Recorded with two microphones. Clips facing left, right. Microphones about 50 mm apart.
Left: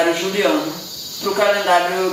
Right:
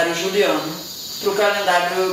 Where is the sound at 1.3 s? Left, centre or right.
Centre.